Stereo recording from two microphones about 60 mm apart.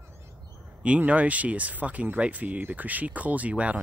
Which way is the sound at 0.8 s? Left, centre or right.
Right.